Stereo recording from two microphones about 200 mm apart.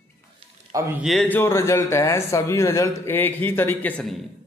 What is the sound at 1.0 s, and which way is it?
Speech, 5° left (ahead or behind).